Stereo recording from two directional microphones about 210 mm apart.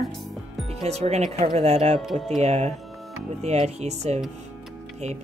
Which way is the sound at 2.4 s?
35° right (ahead or behind).